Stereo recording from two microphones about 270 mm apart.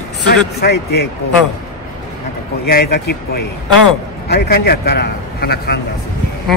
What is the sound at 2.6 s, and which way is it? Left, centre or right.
A man's voice, left.